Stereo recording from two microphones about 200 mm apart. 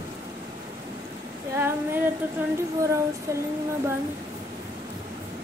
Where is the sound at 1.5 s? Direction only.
10° right (ahead or behind).